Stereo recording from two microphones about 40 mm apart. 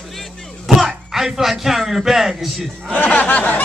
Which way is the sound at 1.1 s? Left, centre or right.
Centre.